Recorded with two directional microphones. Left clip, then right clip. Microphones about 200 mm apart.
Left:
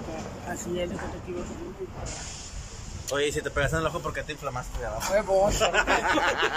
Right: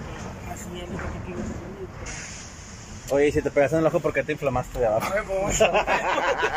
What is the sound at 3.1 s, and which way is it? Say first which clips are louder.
Speech: right 7 dB; 15° right (ahead or behind).